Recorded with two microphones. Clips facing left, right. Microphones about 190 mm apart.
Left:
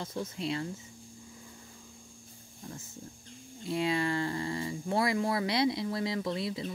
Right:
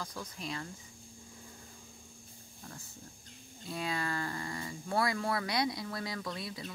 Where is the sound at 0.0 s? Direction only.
25° left (ahead or behind).